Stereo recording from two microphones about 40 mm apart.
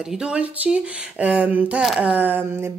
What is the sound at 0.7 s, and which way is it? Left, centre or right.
A woman's voice, right.